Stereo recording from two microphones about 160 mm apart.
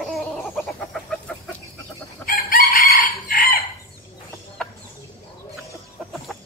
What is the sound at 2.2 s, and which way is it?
Chicken, 65° left (ahead or behind).